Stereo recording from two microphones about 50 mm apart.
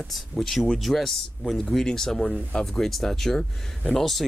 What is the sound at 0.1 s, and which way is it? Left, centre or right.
Speech, centre.